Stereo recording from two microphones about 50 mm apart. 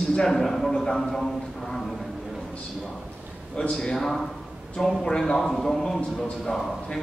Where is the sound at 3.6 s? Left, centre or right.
Centre.